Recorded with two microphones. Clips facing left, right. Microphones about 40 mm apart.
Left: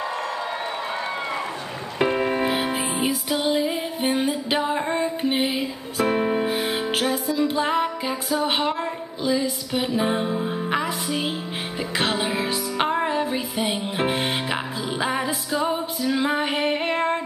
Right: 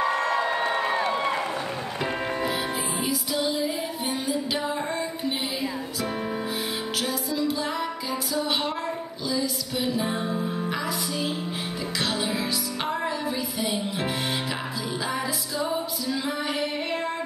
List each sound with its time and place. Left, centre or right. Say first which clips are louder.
0.0 s crowd: right 4 dB; right
2.0 s music: left 7 dB; centre
2.3 s music: left 4 dB; left